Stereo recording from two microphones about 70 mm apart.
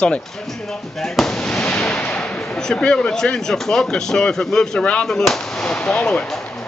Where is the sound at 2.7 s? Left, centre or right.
Centre.